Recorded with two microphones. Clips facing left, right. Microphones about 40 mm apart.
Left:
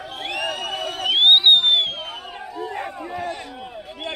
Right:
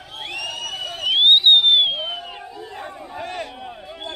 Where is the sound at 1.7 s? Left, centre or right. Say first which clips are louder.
Right 3 dB; centre.